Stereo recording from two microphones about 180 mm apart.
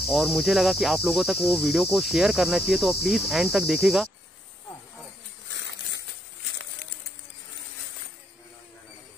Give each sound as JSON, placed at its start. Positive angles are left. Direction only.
{"t": 0.0, "sound": "speech", "side_deg": 0}
{"t": 5.5, "sound": "dog", "side_deg": 80}